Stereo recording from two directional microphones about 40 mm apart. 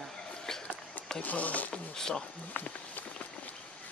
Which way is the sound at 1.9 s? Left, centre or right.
Centre.